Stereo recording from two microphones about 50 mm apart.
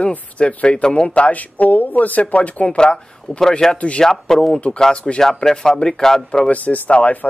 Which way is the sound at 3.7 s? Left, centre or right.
Left.